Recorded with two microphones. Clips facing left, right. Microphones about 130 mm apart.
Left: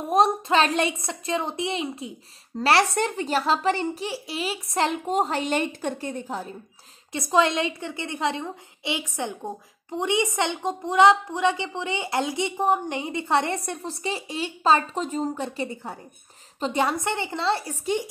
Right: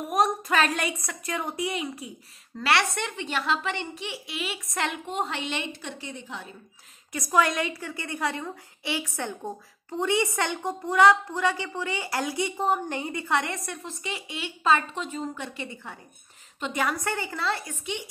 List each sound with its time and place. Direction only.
0.1 s a woman's voice: 25° left (ahead or behind); by 6.5 s 40° left (ahead or behind)
7.1 s a woman's voice: 25° left (ahead or behind)